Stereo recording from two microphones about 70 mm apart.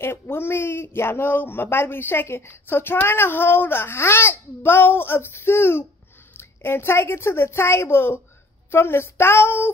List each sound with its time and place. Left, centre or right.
0.0 s speech: left